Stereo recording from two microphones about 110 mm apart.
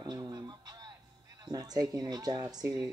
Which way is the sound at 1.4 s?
35° right (ahead or behind).